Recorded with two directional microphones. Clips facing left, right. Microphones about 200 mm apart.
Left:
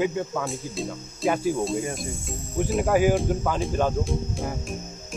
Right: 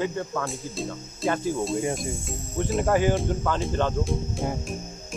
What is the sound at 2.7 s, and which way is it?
Speech, 5° left (ahead or behind).